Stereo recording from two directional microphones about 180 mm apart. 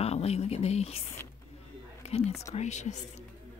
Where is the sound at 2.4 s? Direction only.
40° left (ahead or behind).